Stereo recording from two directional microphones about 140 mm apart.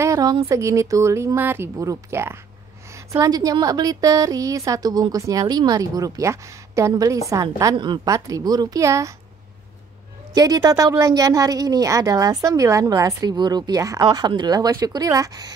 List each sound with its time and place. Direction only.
0.0 s a sound: 25° right (ahead or behind)
0.5 s a woman's voice: 20° right (ahead or behind)
7.7 s a woman's voice: 35° right (ahead or behind)
10.3 s a woman's voice: 25° right (ahead or behind)